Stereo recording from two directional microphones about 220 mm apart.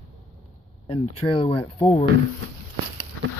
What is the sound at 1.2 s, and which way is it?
Speech, 25° left (ahead or behind).